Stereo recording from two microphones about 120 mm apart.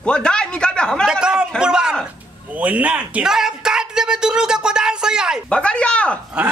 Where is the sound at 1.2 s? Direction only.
5° right (ahead or behind).